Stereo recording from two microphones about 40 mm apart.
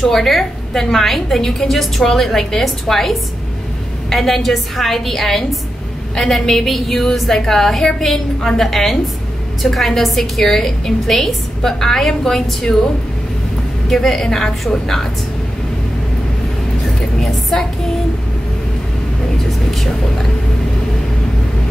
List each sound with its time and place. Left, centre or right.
0.1 s a woman's voice: centre
13.8 s a woman's voice: centre